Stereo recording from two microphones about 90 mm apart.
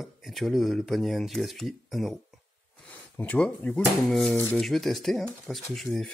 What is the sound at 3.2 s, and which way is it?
Speech, 15° left (ahead or behind).